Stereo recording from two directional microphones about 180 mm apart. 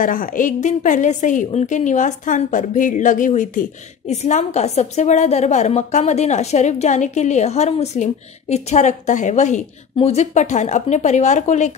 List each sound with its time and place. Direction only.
0.0 s a woman's voice: 50° left (ahead or behind)